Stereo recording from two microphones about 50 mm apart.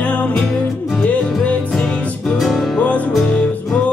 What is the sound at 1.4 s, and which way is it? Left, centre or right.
Music, left.